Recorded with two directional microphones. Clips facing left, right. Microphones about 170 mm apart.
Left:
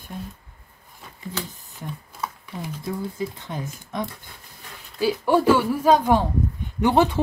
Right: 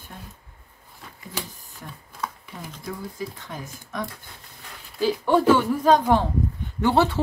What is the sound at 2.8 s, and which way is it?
Speech, 20° left (ahead or behind).